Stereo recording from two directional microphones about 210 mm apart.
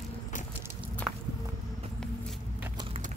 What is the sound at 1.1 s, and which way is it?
Walk, centre (ahead or behind).